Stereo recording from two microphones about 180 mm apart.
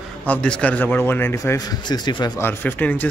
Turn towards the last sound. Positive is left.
turn(degrees=10)  # may be behind; listen again after turning